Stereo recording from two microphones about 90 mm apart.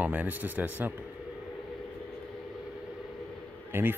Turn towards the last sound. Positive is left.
turn(degrees=-25)  # may be behind; listen again after turning